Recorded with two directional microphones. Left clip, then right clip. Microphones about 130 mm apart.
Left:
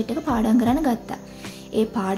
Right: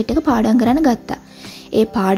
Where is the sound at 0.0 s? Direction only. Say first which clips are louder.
Right 7 dB; 50° right (ahead or behind).